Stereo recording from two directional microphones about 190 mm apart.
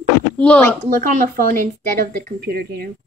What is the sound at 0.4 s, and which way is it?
Speech, 5° left (ahead or behind).